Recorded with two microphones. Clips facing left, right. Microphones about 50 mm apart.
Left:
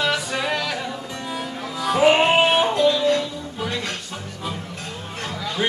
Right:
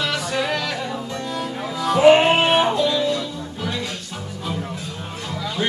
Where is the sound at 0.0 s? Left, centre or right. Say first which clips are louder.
Even; centre.